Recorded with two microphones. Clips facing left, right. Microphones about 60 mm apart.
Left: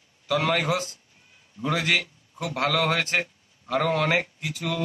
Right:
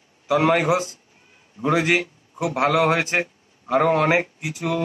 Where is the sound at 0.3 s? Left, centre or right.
Right.